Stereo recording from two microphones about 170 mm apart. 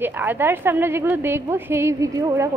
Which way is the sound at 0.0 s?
10° right (ahead or behind).